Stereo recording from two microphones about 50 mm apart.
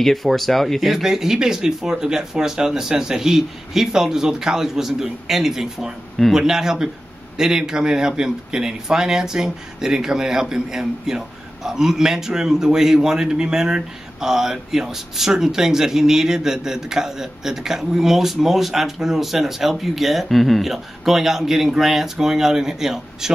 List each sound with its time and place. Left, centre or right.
0.0 s a man's voice: centre